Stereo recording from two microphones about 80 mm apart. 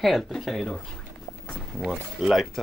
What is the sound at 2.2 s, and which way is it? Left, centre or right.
Speech, centre.